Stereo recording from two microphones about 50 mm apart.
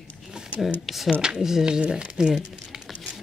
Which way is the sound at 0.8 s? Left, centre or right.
Centre.